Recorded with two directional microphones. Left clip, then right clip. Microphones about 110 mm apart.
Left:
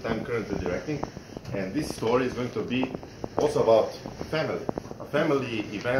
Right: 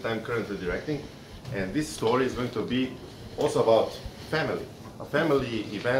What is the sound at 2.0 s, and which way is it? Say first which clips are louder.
Speech: even; 10° right (ahead or behind).